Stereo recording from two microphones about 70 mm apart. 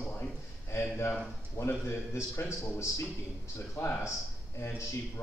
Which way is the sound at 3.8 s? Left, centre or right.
Left.